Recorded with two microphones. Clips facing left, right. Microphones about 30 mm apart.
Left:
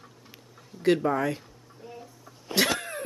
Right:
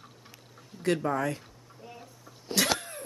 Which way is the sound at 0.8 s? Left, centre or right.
Centre.